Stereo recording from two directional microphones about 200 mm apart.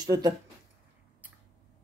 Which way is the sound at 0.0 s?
20° right (ahead or behind).